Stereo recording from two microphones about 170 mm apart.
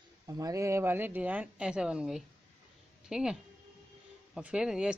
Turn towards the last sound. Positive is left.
turn(degrees=-5)  # may be behind; listen again after turning